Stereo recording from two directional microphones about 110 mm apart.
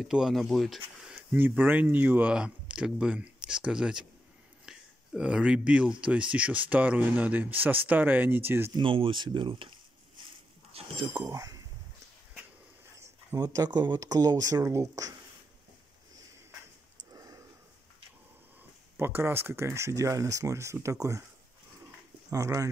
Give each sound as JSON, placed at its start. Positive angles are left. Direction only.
{"t": 0.0, "sound": "speech", "side_deg": -5}
{"t": 8.7, "sound": "speech", "side_deg": -50}
{"t": 13.0, "sound": "speech", "side_deg": -30}
{"t": 18.9, "sound": "speech", "side_deg": -20}
{"t": 22.3, "sound": "speech", "side_deg": -30}